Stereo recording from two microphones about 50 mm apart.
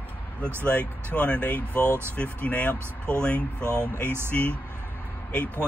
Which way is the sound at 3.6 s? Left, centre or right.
Right.